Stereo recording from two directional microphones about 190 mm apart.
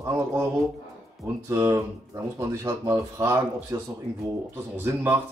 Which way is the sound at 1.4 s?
15° right (ahead or behind).